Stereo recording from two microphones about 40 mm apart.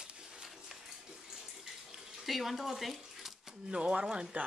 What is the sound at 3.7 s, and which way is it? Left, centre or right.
Speech, right.